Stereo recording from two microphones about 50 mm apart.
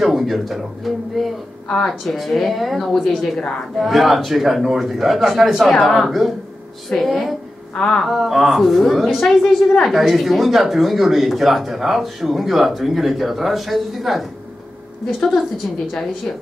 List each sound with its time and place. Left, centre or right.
0.0 s a woman's voice: centre
3.8 s speech: centre
7.7 s a sound: centre
8.0 s speech: centre